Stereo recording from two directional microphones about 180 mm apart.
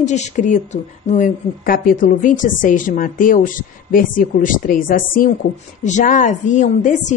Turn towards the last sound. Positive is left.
turn(degrees=45)  # may be behind; listen again after turning